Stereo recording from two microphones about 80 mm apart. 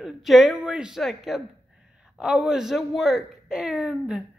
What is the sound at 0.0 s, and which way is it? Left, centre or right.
Speech, centre.